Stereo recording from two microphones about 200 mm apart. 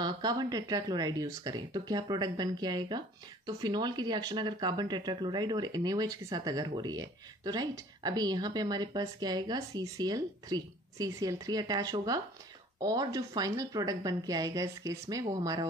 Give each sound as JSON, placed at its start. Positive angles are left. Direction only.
{"t": 0.0, "sound": "speech", "side_deg": -20}